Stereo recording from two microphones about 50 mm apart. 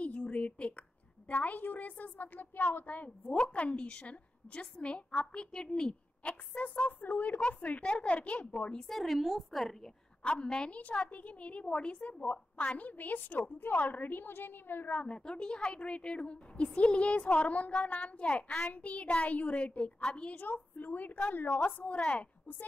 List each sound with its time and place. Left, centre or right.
0.0 s a sound: left
1.3 s a woman's voice: left; by 5.9 s centre
6.2 s a woman's voice: left
8.8 s a woman's voice: centre
10.2 s a woman's voice: centre
10.7 s a woman's voice: left
15.0 s a woman's voice: centre
20.7 s a woman's voice: left